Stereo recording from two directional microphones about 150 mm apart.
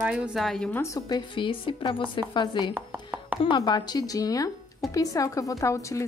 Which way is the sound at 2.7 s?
10° right (ahead or behind).